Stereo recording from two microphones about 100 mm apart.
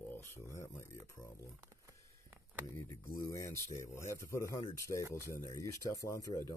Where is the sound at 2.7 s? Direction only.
25° left (ahead or behind).